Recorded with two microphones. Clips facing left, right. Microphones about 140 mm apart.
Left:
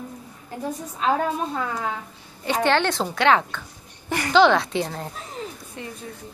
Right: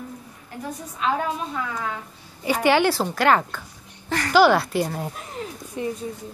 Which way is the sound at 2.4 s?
10° right (ahead or behind).